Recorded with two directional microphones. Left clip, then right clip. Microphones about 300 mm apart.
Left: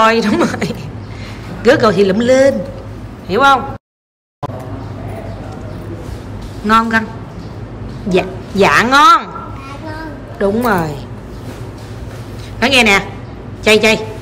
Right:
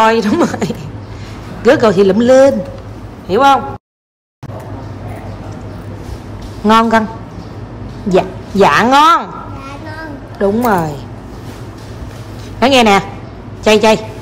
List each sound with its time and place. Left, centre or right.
0.0 s speech: centre
6.6 s speech: centre
8.1 s speech: centre
10.4 s speech: centre
12.5 s speech: centre